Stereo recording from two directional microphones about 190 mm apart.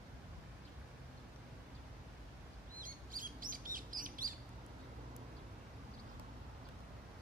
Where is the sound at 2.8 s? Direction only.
45° right (ahead or behind).